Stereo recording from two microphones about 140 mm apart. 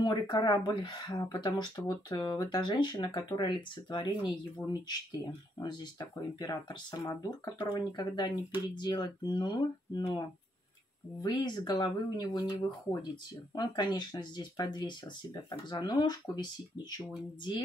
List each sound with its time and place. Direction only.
0.0 s speech: 35° left (ahead or behind)